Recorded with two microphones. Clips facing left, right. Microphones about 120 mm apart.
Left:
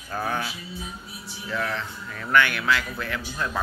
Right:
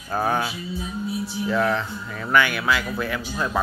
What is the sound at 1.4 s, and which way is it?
Speech, 20° right (ahead or behind).